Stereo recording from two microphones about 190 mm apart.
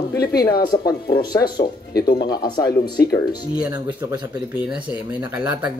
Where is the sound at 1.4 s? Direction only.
55° left (ahead or behind).